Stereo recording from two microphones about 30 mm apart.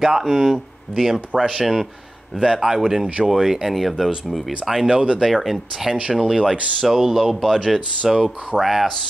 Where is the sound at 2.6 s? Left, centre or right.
Centre.